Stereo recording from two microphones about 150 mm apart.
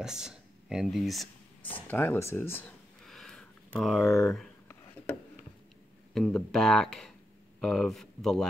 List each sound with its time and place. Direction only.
0.0 s speech: 5° right (ahead or behind)
1.6 s speech: 10° left (ahead or behind)
3.0 s a sound: centre (ahead or behind)
4.0 s speech: 20° left (ahead or behind)
6.1 s speech: 5° left (ahead or behind)